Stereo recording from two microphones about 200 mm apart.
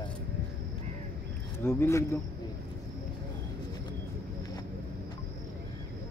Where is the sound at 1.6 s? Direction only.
15° left (ahead or behind).